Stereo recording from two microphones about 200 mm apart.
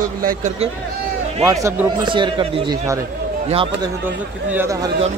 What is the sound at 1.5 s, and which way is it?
A man's voice, 15° right (ahead or behind).